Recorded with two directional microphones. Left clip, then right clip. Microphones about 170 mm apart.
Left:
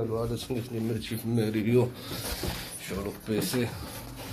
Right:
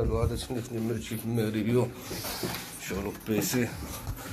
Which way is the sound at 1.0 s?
25° left (ahead or behind).